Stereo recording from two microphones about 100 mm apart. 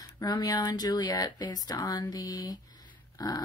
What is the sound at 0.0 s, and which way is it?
Speech, 40° left (ahead or behind).